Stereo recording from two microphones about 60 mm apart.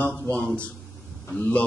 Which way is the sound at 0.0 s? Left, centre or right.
Left.